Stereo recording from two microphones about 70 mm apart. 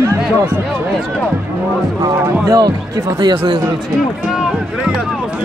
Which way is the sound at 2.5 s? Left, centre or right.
Right.